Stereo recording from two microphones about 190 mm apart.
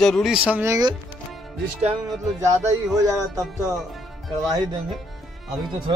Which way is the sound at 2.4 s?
15° right (ahead or behind).